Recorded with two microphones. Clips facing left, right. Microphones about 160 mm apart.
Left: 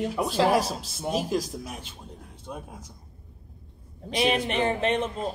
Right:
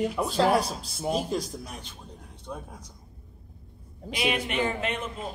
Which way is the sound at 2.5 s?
15° left (ahead or behind).